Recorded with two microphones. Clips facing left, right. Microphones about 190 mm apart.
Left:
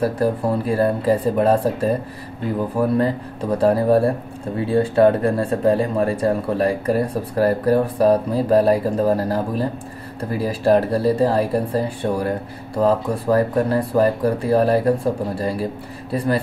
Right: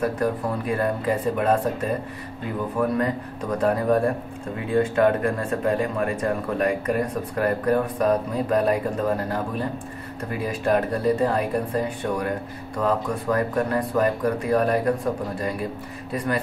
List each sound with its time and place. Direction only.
0.0 s speech: 35° left (ahead or behind)